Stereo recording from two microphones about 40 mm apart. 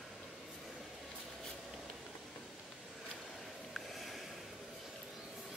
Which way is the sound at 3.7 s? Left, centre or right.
Centre.